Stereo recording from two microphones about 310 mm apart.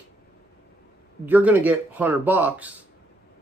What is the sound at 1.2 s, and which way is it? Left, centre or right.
Speech, centre.